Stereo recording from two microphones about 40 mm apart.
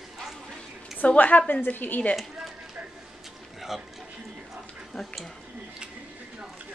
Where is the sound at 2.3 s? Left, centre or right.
Centre.